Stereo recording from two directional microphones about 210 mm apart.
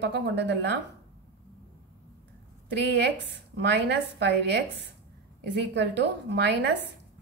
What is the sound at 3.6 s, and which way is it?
A woman's voice, 55° right (ahead or behind).